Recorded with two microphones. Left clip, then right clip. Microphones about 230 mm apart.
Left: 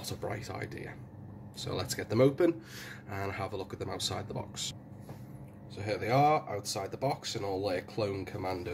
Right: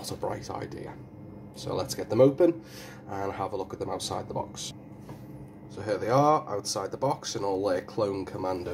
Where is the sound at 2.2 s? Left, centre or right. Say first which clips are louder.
Right 5 dB; left.